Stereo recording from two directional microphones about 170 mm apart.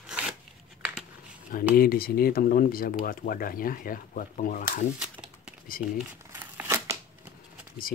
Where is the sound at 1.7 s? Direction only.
60° left (ahead or behind).